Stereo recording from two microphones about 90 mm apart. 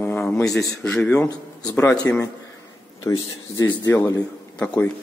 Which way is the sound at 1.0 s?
25° left (ahead or behind).